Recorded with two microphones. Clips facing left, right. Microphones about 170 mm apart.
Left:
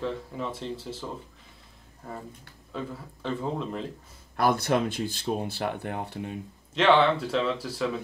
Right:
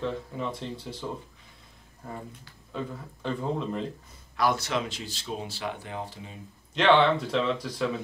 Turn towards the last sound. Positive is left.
turn(degrees=5)  # may be behind; listen again after turning